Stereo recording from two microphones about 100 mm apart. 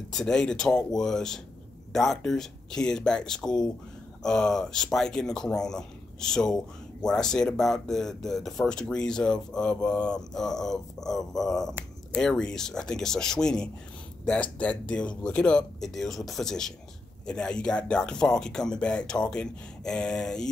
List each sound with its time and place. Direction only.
0.1 s speech: 5° left (ahead or behind)